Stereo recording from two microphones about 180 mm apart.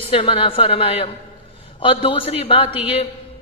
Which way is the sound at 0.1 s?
30° left (ahead or behind).